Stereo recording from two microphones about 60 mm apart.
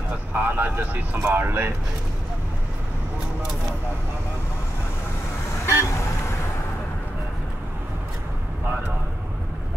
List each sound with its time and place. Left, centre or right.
0.3 s speech: right
5.7 s toot: left